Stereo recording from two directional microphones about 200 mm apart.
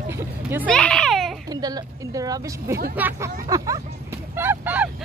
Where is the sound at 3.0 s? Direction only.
10° right (ahead or behind).